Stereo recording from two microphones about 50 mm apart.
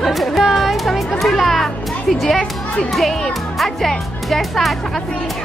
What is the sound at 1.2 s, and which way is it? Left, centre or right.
A child's voice, centre.